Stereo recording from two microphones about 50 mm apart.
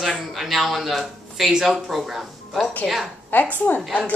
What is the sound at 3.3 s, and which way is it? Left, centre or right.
Speech, left.